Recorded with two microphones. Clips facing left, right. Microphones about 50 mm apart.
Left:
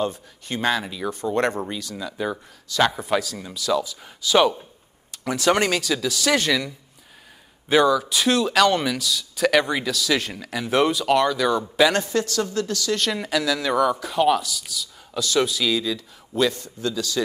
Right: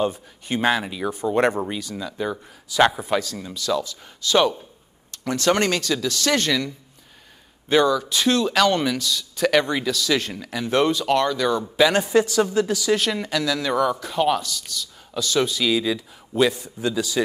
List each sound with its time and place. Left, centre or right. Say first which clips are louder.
0.0 s speech: right 2 dB; centre
7.7 s speech: left 1 dB; centre
12.0 s speech: right 5 dB; centre
15.8 s speech: right 3 dB; centre